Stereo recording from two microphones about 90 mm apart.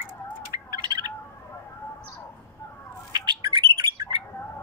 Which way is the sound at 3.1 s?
50° right (ahead or behind).